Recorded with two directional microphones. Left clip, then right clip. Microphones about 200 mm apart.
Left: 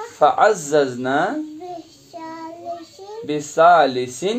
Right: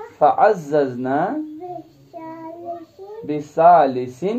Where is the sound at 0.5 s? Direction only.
30° left (ahead or behind).